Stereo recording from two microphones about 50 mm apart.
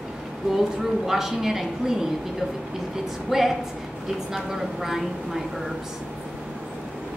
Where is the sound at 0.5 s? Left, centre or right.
Centre.